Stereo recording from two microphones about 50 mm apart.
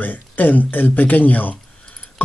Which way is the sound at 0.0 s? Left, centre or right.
Left.